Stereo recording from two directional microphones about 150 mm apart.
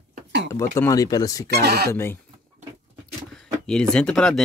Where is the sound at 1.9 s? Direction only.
15° left (ahead or behind).